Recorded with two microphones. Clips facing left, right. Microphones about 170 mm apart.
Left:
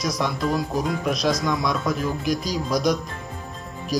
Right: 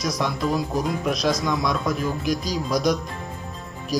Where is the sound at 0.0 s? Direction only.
Centre (ahead or behind).